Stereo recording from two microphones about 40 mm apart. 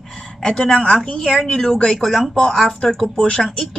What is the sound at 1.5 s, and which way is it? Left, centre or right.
Speech, centre.